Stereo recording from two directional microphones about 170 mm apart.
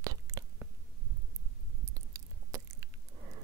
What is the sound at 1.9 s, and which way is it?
Chewing, 20° right (ahead or behind).